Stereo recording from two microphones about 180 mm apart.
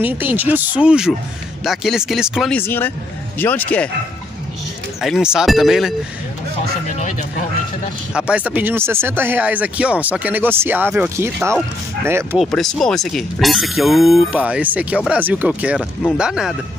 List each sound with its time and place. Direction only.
0.0 s speech: 10° right (ahead or behind)
2.5 s speech: 10° left (ahead or behind)
5.0 s speech: 5° right (ahead or behind)
7.0 s a sound: 40° left (ahead or behind)
8.1 s speech: 5° right (ahead or behind)
12.4 s speech: centre (ahead or behind)